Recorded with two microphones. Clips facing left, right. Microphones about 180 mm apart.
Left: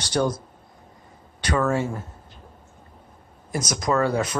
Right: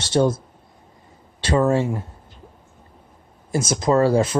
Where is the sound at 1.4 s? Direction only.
25° right (ahead or behind).